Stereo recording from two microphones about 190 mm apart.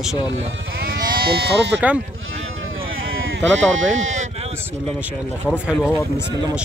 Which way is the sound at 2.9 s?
85° right.